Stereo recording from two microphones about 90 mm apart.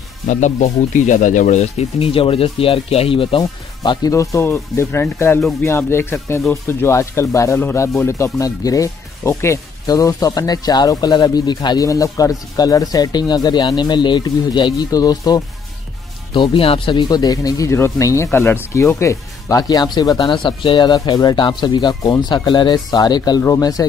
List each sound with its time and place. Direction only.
2.0 s speech: 90° left; by 4.1 s 55° left (ahead or behind)
4.1 s speech: 35° left (ahead or behind)
9.8 s speech: 40° left (ahead or behind)
11.9 s speech: 40° left (ahead or behind)
16.3 s speech: 85° left
17.1 s speech: 45° left (ahead or behind)
17.7 s speech: 30° left (ahead or behind)